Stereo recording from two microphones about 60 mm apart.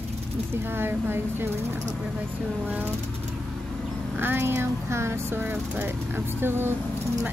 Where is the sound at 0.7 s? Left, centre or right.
Right.